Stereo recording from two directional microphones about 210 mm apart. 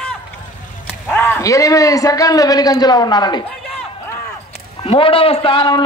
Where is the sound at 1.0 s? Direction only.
10° left (ahead or behind).